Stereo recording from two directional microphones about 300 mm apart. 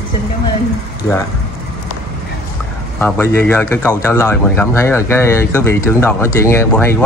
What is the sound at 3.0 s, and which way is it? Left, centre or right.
Speech, centre.